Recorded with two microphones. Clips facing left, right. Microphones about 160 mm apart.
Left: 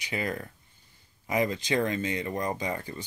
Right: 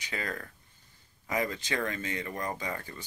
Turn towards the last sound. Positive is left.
turn(degrees=20)  # may be behind; listen again after turning